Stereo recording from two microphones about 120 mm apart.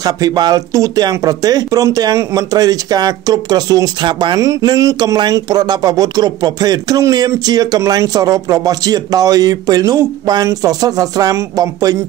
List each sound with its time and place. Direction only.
0.0 s speech: 35° right (ahead or behind)